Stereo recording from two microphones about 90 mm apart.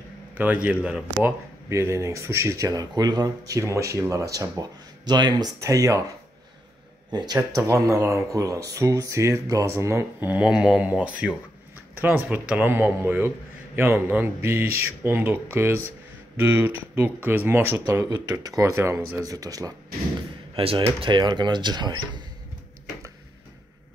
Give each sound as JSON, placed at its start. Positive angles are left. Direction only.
{"t": 0.3, "sound": "a man's voice", "side_deg": -20}
{"t": 1.7, "sound": "speech", "side_deg": -30}
{"t": 5.6, "sound": "speech", "side_deg": -35}
{"t": 7.1, "sound": "speech", "side_deg": -50}
{"t": 10.3, "sound": "a man's voice", "side_deg": -10}
{"t": 19.3, "sound": "speech", "side_deg": -40}
{"t": 20.5, "sound": "speech", "side_deg": -90}